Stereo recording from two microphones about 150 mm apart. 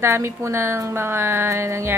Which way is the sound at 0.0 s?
20° right (ahead or behind).